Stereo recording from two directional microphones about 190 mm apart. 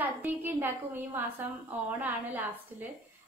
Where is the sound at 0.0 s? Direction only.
10° right (ahead or behind).